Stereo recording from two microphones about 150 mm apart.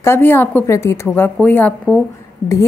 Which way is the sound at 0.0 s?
15° left (ahead or behind).